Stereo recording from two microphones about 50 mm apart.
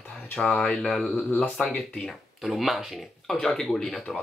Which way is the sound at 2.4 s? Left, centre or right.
Centre.